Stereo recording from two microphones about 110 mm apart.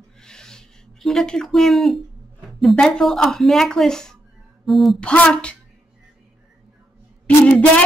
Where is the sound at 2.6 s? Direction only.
5° left (ahead or behind).